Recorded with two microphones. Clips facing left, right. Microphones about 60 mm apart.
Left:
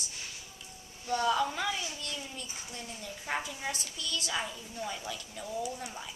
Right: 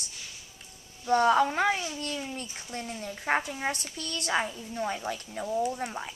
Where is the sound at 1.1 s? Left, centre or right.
Right.